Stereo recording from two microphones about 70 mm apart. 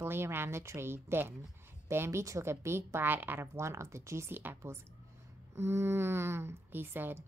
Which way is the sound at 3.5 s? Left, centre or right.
Right.